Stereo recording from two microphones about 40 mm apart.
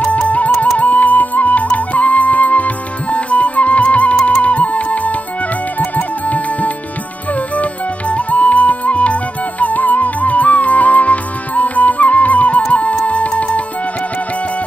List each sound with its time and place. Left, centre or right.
0.1 s music: left